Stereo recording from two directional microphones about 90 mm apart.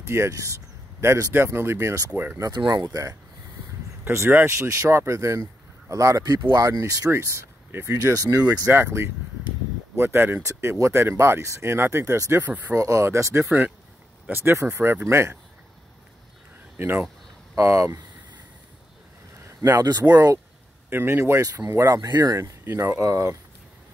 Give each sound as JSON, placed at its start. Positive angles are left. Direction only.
{"t": 0.0, "sound": "speech", "side_deg": -30}
{"t": 1.3, "sound": "speech", "side_deg": -25}
{"t": 2.3, "sound": "speech", "side_deg": -45}
{"t": 4.0, "sound": "speech", "side_deg": -25}
{"t": 13.5, "sound": "speech", "side_deg": -15}
{"t": 16.7, "sound": "speech", "side_deg": -25}
{"t": 19.4, "sound": "a sound", "side_deg": -25}
{"t": 20.0, "sound": "speech", "side_deg": -15}
{"t": 20.9, "sound": "speech", "side_deg": -25}
{"t": 21.6, "sound": "speech", "side_deg": -35}
{"t": 22.0, "sound": "speech", "side_deg": -50}
{"t": 22.3, "sound": "speech", "side_deg": -30}